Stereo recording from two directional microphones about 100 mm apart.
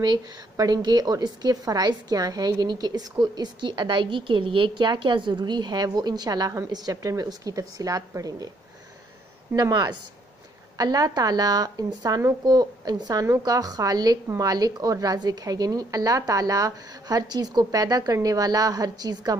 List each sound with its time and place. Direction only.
0.0 s a woman's voice: 45° right (ahead or behind)
9.6 s a woman's voice: 45° right (ahead or behind)